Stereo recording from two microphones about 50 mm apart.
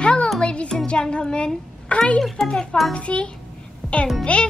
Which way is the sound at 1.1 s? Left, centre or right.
Left.